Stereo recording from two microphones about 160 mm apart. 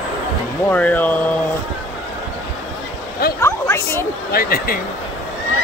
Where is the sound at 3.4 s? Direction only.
15° left (ahead or behind).